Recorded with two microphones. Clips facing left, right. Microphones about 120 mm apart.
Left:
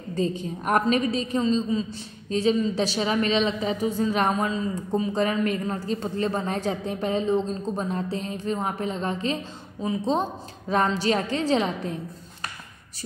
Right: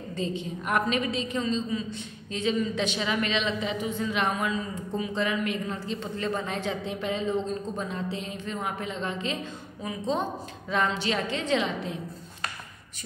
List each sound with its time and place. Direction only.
0.1 s a woman's voice: 40° left (ahead or behind)